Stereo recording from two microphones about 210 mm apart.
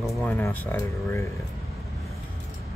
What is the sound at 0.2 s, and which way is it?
Speech, 10° left (ahead or behind).